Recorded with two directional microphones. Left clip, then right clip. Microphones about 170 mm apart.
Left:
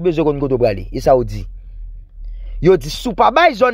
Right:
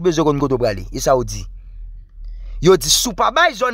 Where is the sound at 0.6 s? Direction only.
5° right (ahead or behind).